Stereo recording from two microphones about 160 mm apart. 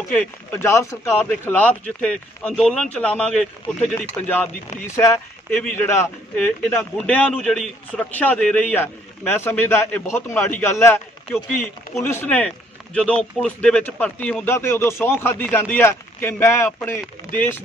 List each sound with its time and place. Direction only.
0.6 s a man's voice: 15° left (ahead or behind)
6.3 s a man's voice: 10° left (ahead or behind)